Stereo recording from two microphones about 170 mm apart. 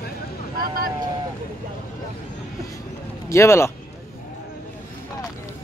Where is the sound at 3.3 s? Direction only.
15° left (ahead or behind).